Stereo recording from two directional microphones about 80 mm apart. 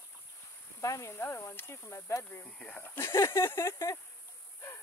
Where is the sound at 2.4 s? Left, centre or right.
Centre.